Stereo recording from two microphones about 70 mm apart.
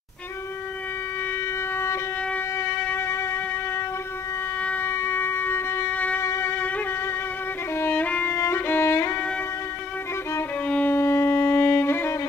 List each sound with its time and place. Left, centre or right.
2.5 s music: left
3.0 s music: left
4.6 s a sound: left
4.8 s wind instrument: left
5.9 s music: left
6.2 s music: left
7.9 s music: left
8.4 s violin: left
10.7 s music: left
11.0 s violin: left